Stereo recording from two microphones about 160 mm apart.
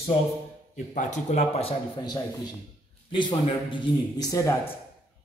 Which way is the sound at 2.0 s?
25° left (ahead or behind).